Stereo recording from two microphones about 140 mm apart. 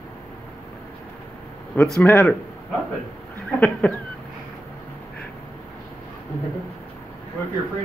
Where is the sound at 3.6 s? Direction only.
10° left (ahead or behind).